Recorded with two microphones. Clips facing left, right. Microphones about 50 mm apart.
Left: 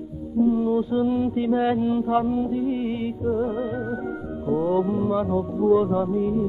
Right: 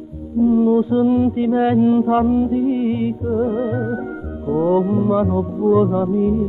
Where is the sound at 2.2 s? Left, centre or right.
Right.